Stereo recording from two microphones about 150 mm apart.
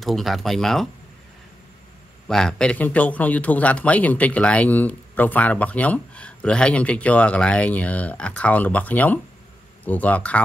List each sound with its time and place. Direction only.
0.0 s speech: centre (ahead or behind)
2.2 s a man's voice: 5° left (ahead or behind)